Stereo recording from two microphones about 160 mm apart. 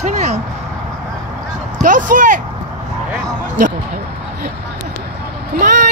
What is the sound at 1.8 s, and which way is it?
Speech, 55° right (ahead or behind).